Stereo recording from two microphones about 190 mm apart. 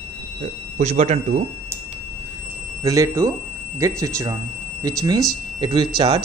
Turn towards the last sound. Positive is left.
turn(degrees=-25)  # may be behind; listen again after turning